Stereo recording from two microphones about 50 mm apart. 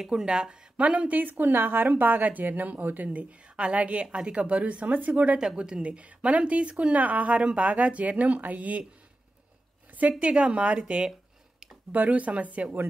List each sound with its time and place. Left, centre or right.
0.0 s speech: centre
0.7 s a woman's voice: right
3.1 s a woman's voice: right
5.4 s a woman's voice: centre; by 8.8 s right
9.9 s a woman's voice: right